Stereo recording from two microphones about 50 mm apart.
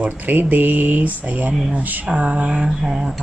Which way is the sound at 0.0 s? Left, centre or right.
Right.